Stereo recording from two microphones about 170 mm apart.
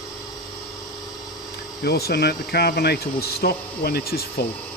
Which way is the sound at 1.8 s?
70° left (ahead or behind).